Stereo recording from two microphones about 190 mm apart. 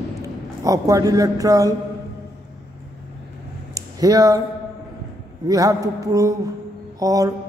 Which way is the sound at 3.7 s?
20° right (ahead or behind).